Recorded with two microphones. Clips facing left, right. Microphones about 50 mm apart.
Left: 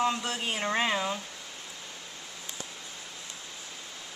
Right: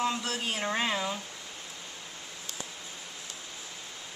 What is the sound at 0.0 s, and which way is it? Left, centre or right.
A woman's voice, centre.